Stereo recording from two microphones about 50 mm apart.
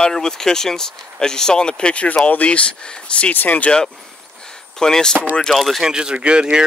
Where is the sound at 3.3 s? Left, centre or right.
Left.